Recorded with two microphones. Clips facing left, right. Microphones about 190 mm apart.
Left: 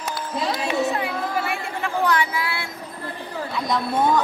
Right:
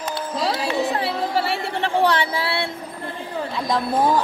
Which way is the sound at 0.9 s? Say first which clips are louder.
Right 3 dB; 30° right (ahead or behind).